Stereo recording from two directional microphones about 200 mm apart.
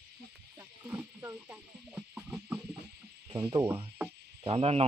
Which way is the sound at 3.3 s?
25° right (ahead or behind).